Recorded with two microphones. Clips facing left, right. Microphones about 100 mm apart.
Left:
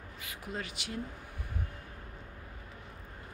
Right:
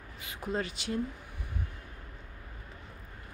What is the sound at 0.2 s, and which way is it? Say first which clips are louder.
Speech: right 6 dB; 30° right (ahead or behind).